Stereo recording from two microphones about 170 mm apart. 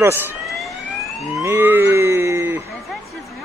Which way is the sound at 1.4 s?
10° right (ahead or behind).